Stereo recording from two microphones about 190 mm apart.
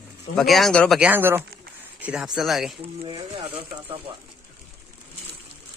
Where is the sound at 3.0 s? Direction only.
25° right (ahead or behind).